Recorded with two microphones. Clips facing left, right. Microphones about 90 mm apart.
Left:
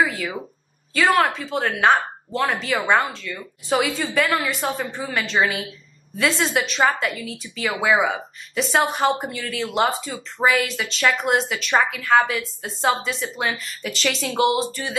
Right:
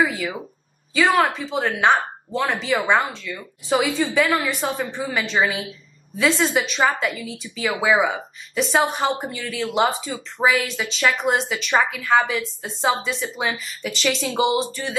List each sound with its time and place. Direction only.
0.0 s speech: centre (ahead or behind)